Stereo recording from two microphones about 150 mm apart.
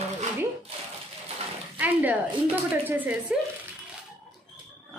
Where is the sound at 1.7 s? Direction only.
10° right (ahead or behind).